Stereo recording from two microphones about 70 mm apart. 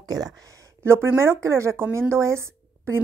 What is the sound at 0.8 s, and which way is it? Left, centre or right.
Speech, right.